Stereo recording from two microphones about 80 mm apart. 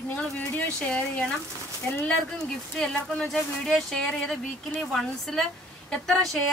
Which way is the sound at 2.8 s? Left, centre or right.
Centre.